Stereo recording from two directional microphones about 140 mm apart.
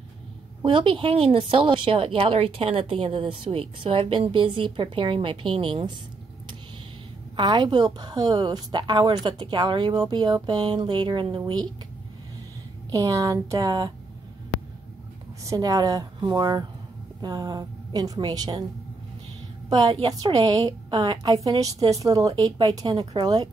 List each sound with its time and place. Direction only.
0.7 s a woman's voice: 40° right (ahead or behind)
7.3 s a woman's voice: 35° right (ahead or behind)
12.9 s speech: 25° right (ahead or behind)
15.4 s speech: 30° right (ahead or behind)
19.7 s a woman's voice: 30° right (ahead or behind)